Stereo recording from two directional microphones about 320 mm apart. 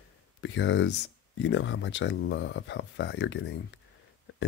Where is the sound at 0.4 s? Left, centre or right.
Left.